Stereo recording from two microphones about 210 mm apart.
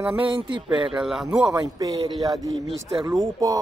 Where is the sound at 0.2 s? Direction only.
25° right (ahead or behind).